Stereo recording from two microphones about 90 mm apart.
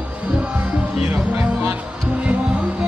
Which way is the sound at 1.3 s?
25° right (ahead or behind).